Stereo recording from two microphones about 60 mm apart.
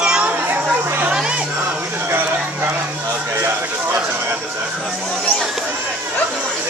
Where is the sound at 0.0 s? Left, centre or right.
Centre.